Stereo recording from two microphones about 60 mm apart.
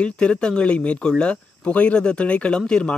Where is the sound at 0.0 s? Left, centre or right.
Centre.